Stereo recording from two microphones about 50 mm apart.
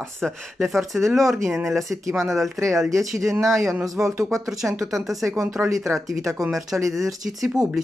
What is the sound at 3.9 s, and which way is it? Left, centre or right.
Speech, right.